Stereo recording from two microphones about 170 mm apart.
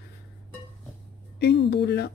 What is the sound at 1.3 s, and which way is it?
Speech, 80° left.